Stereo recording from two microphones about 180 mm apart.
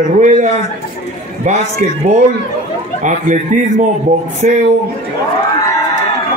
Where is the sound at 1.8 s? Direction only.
45° right (ahead or behind).